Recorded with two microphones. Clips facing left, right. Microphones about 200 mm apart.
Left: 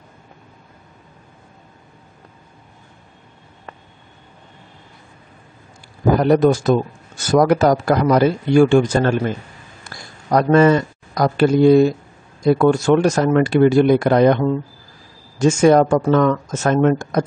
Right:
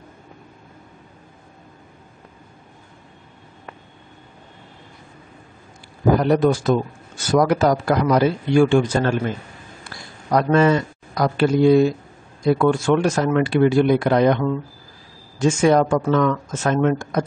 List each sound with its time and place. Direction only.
6.2 s a man's voice: 45° left (ahead or behind)